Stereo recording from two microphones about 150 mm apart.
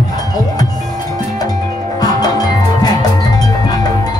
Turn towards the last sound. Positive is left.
turn(degrees=25)  # may be behind; listen again after turning